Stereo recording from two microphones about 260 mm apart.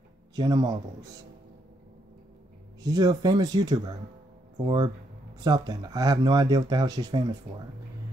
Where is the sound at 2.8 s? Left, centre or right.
Centre.